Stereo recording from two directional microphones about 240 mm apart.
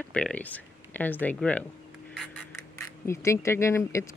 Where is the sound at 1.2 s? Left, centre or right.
Centre.